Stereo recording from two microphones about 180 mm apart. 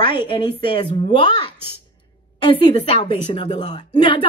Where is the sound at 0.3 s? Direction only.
25° left (ahead or behind).